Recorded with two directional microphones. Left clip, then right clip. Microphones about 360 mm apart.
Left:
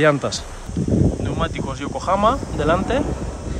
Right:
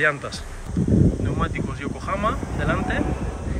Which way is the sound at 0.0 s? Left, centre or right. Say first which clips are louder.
Left 5 dB; centre.